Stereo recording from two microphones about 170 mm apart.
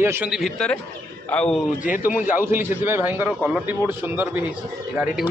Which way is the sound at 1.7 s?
50° left (ahead or behind).